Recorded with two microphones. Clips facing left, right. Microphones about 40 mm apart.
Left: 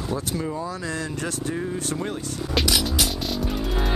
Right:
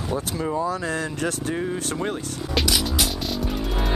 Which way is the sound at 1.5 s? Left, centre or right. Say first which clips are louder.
Right 2 dB; right.